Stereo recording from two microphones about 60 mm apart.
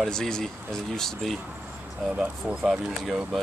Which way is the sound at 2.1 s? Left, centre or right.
Centre.